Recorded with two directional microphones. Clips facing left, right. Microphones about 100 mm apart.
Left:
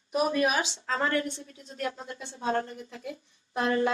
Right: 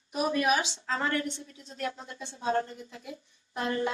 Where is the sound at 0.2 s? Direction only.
30° left (ahead or behind).